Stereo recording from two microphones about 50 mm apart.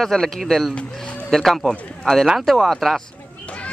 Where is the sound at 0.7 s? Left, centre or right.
Left.